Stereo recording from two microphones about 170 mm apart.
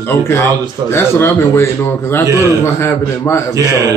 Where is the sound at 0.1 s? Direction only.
15° left (ahead or behind).